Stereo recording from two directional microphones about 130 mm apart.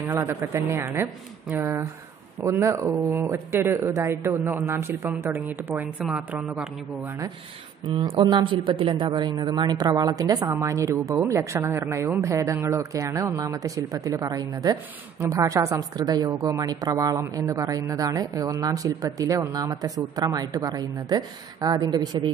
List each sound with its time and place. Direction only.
0.1 s speech: 20° right (ahead or behind)
6.0 s speech: 5° right (ahead or behind)
8.1 s speech: 40° right (ahead or behind)